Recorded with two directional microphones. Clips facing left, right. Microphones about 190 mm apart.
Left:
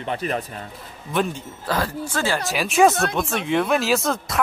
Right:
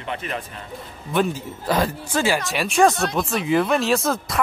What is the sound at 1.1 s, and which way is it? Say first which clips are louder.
Speech: right 2 dB; centre (ahead or behind).